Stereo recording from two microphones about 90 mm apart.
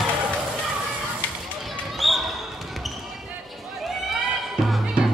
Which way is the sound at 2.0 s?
Centre (ahead or behind).